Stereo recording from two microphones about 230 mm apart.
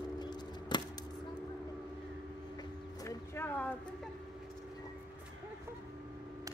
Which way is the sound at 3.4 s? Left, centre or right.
Centre.